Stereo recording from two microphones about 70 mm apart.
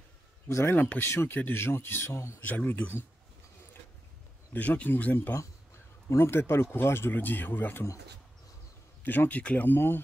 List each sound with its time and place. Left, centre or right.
0.5 s speech: left
2.4 s speech: left
4.6 s speech: left
9.0 s speech: left